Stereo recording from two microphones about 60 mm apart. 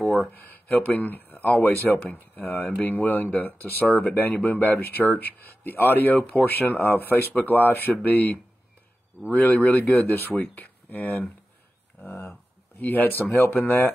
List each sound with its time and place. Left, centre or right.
0.1 s speech: left
12.0 s speech: left
12.8 s speech: left